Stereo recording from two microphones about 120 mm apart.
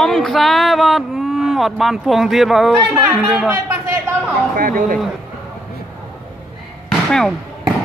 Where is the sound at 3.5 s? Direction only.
20° right (ahead or behind).